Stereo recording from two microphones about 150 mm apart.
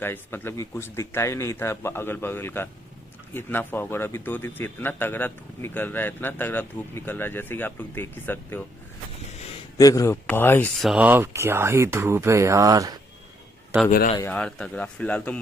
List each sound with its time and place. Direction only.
0.0 s a man's voice: 15° left (ahead or behind)
9.8 s a man's voice: 20° left (ahead or behind)
10.8 s speech: centre (ahead or behind)
11.1 s speech: 15° right (ahead or behind)
14.3 s a man's voice: 5° left (ahead or behind)